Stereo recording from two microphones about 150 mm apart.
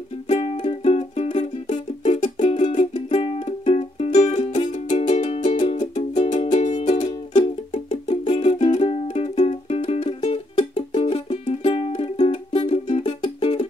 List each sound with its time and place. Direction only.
0.3 s music: 40° left (ahead or behind)
7.3 s music: 35° left (ahead or behind)